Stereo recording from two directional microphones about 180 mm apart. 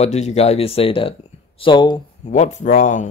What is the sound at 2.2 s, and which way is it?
Speech, 40° left (ahead or behind).